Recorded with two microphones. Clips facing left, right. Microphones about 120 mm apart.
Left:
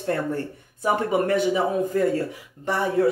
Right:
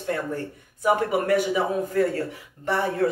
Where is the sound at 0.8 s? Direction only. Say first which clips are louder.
Even; 25° left (ahead or behind).